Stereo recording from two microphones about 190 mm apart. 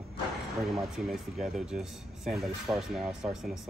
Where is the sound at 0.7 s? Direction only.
Centre (ahead or behind).